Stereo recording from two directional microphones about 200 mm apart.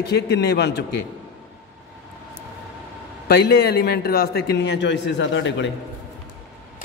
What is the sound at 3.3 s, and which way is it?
Speech, 50° left (ahead or behind).